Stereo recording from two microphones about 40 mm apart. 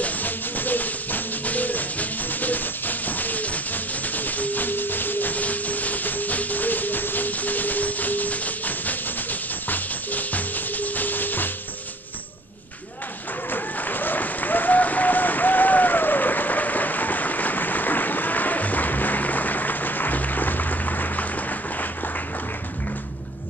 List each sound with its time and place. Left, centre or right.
0.0 s music: left
13.5 s applause: left